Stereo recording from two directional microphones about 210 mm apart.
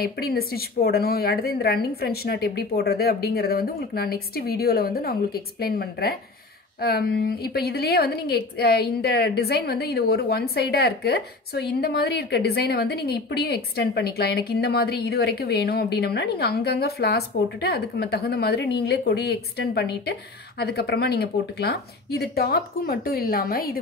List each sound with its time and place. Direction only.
0.0 s a woman's voice: 45° left (ahead or behind)